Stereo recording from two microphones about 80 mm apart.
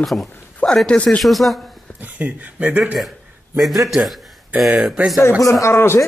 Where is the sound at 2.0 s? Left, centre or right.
Centre.